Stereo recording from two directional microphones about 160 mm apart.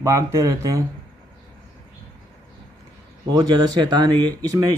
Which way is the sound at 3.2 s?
25° right (ahead or behind).